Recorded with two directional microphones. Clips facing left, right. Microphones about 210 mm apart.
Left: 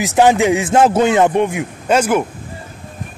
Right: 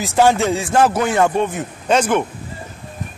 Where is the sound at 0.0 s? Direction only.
15° left (ahead or behind).